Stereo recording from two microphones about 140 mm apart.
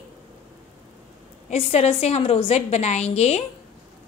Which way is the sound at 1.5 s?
50° left (ahead or behind).